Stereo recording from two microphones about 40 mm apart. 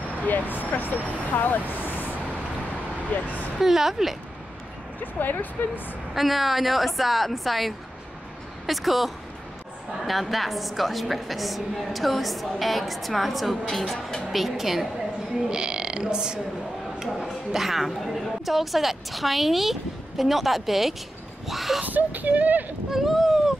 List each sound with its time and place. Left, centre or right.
0.3 s speech: left
3.1 s speech: left
3.5 s speech: centre
5.0 s speech: left
6.1 s a woman's voice: centre
15.5 s a sound: right
17.3 s a woman's voice: centre
21.8 s speech: right
22.8 s a sound: centre